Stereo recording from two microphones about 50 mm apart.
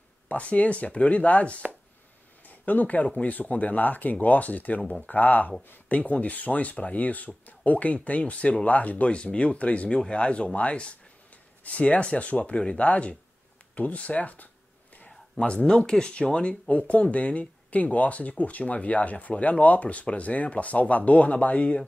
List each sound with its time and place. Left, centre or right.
0.3 s speech: left